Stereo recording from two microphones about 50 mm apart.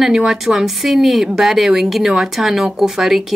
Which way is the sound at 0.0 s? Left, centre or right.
Centre.